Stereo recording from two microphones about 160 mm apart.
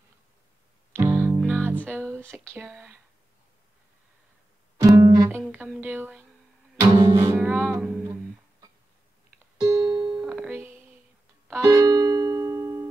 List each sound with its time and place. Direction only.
0.9 s music: 10° right (ahead or behind)
2.5 s speech: 5° right (ahead or behind)
4.8 s music: 20° right (ahead or behind)
5.7 s speech: 10° right (ahead or behind)
6.8 s music: 20° right (ahead or behind)
9.6 s music: 20° right (ahead or behind)
10.1 s music: 5° right (ahead or behind)